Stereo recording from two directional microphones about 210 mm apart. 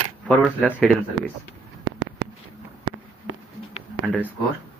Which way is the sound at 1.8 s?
60° right (ahead or behind).